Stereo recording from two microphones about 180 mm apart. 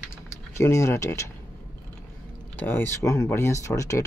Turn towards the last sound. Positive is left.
turn(degrees=15)  # may be behind; listen again after turning